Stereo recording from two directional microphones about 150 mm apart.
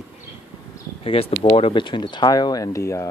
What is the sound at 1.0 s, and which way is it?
Speech, 40° left (ahead or behind).